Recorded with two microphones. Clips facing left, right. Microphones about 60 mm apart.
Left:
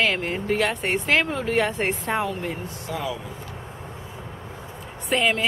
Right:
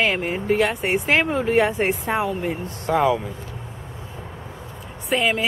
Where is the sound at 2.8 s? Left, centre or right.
Right.